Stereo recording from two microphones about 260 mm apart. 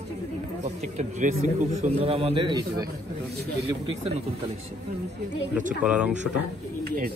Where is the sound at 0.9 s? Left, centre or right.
Right.